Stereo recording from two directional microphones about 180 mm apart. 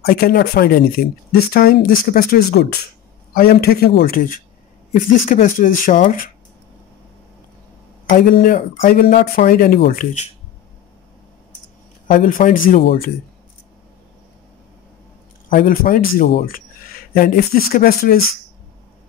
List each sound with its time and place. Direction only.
0.0 s speech: 55° left (ahead or behind)
8.1 s speech: 50° left (ahead or behind)
12.1 s speech: 50° left (ahead or behind)
15.5 s speech: 50° left (ahead or behind)